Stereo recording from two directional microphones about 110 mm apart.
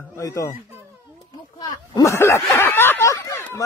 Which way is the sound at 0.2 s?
30° left (ahead or behind).